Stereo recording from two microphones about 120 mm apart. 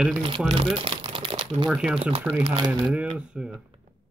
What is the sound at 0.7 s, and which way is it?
Crumpling, 50° right (ahead or behind).